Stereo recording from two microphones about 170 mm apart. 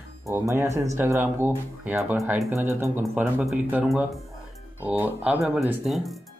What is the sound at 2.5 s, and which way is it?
Speech, 15° right (ahead or behind).